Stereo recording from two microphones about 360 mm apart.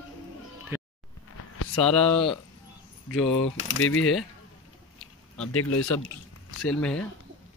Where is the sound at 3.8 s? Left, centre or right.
Left.